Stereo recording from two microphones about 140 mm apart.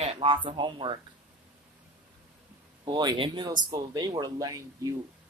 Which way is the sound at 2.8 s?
30° right (ahead or behind).